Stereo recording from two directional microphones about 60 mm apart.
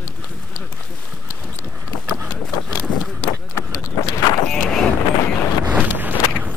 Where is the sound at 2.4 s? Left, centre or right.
Centre.